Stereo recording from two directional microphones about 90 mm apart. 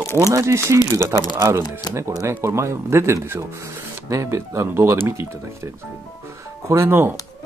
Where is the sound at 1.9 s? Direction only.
35° right (ahead or behind).